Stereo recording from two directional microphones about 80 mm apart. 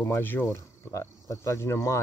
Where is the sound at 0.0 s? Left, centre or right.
Left.